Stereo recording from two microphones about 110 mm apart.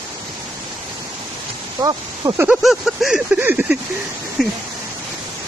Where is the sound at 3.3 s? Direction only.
15° right (ahead or behind).